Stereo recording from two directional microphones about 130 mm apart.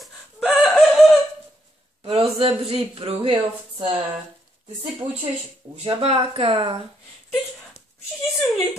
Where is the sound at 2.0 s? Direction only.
45° right (ahead or behind).